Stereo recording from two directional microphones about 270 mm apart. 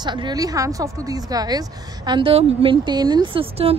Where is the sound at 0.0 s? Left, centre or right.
Centre.